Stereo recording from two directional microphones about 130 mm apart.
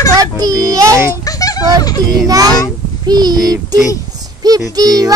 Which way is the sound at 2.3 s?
25° right (ahead or behind).